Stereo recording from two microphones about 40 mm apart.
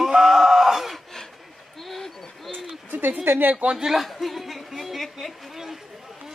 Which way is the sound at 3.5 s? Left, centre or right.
Right.